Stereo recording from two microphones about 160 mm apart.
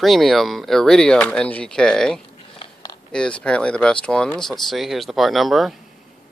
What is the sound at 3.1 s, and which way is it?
Speech, 5° left (ahead or behind).